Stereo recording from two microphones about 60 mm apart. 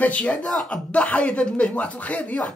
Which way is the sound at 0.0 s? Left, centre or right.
Left.